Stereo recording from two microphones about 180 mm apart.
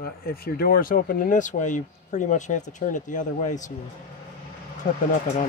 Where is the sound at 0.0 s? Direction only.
55° left (ahead or behind).